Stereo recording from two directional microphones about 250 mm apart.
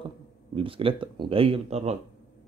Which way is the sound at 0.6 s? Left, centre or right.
Right.